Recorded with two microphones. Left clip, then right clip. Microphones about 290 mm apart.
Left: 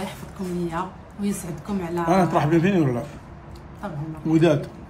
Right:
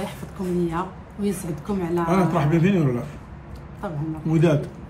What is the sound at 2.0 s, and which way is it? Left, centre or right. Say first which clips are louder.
Speech: left 4 dB; left.